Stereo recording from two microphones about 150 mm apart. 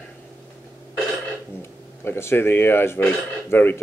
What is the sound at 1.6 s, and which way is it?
Speech, 15° left (ahead or behind).